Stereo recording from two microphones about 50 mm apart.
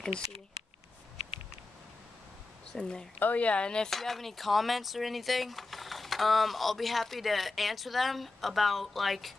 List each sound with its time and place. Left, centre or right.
2.7 s speech: centre
3.2 s speech: left
3.9 s speech: centre